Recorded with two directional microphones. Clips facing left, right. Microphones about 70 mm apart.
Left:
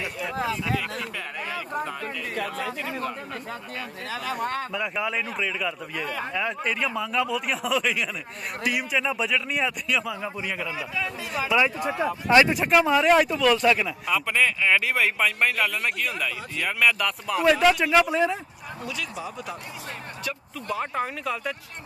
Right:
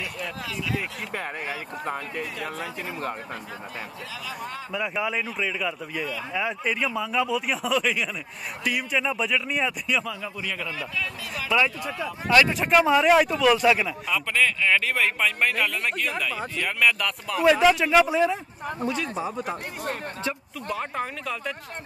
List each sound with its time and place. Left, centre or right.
0.4 s speech: left
2.5 s speech: left
4.1 s speech: left
4.7 s speech: centre
10.2 s speech: centre
18.8 s speech: right
20.7 s speech: centre